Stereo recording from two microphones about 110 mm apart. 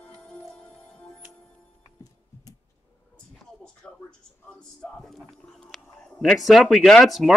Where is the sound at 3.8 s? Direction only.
5° left (ahead or behind).